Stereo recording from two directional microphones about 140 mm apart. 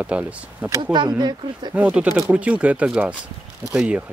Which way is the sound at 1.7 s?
5° right (ahead or behind).